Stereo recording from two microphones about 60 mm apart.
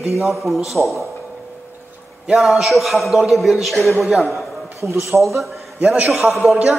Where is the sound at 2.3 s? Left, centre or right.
Centre.